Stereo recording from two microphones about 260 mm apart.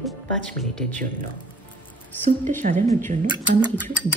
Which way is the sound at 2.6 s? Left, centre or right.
Right.